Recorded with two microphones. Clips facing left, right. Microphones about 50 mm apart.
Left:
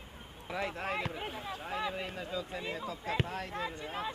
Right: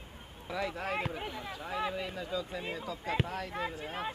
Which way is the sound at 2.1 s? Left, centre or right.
Left.